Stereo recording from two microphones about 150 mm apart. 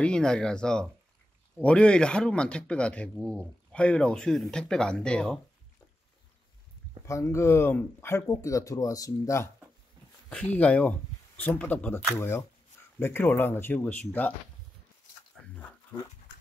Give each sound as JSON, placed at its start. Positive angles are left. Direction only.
{"t": 0.0, "sound": "speech", "side_deg": 5}
{"t": 7.1, "sound": "speech", "side_deg": 20}
{"t": 10.3, "sound": "speech", "side_deg": 10}
{"t": 15.4, "sound": "a sound", "side_deg": 10}